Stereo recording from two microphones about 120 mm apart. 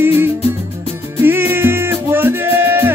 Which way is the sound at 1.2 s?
20° right (ahead or behind).